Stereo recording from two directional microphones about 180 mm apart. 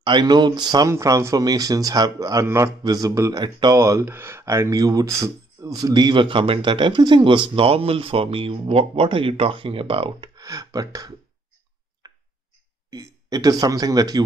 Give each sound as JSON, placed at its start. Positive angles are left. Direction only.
{"t": 0.0, "sound": "speech", "side_deg": -25}
{"t": 12.9, "sound": "speech", "side_deg": -20}